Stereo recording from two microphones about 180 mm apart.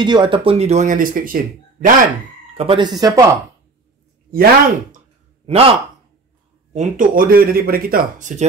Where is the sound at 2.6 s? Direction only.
25° right (ahead or behind).